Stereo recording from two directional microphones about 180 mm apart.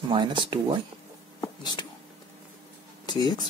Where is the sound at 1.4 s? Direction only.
25° left (ahead or behind).